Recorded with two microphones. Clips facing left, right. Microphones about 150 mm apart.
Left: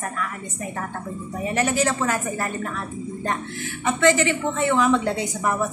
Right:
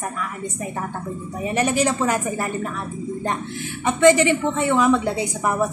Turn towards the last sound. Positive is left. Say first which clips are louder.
# right 1 dB
turn(degrees=-10)  # may be behind; listen again after turning